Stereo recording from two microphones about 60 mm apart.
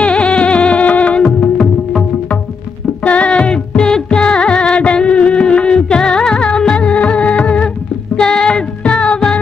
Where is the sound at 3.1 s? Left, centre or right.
Left.